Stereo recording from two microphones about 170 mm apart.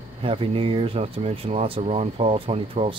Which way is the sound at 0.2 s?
30° right (ahead or behind).